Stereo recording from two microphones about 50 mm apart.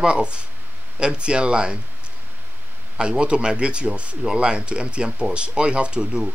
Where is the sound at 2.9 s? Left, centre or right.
Centre.